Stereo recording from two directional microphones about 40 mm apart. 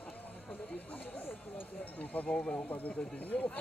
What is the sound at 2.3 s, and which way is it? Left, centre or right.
Speech, left.